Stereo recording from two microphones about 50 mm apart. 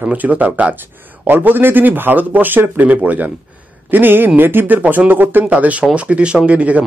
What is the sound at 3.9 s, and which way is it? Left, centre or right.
Speech, right.